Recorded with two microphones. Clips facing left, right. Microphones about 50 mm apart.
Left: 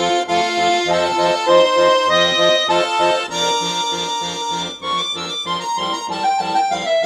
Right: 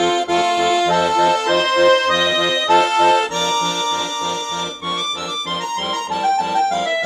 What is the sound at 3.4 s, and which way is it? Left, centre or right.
Accordion, right.